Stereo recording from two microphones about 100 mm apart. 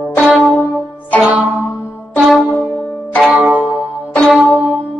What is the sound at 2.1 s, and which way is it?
Music, centre (ahead or behind).